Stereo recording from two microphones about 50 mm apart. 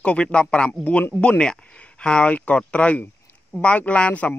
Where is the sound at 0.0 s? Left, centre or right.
Left.